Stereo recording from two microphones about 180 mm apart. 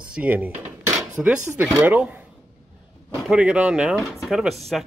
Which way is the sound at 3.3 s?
5° right (ahead or behind).